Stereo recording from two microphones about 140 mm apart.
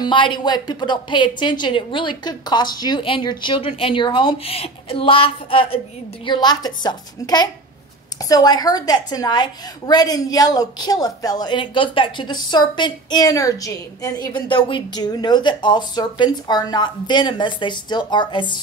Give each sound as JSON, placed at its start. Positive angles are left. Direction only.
{"t": 0.0, "sound": "a woman's voice", "side_deg": 35}